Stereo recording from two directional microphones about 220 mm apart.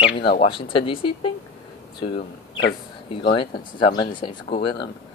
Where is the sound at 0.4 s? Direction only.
25° left (ahead or behind).